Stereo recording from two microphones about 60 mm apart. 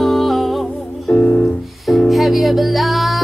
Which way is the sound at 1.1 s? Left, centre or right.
Left.